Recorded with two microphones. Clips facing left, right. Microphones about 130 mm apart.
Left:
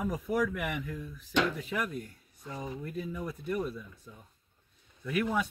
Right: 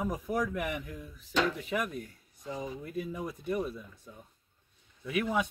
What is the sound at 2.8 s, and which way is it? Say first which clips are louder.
Speech: right 1 dB; 20° right (ahead or behind).